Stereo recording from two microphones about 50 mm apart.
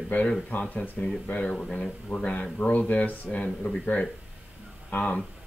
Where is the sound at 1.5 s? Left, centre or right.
Centre.